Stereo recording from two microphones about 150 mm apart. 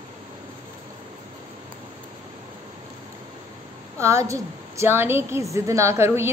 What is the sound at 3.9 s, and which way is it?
A woman's voice, 20° right (ahead or behind).